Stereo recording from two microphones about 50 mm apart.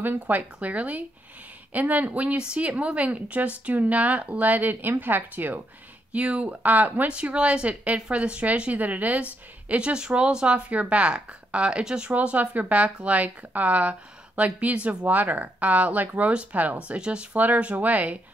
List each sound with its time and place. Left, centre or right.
0.0 s a woman's voice: right
17.3 s speech: right